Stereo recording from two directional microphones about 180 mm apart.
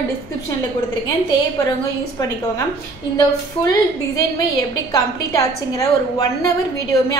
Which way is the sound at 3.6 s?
20° left (ahead or behind).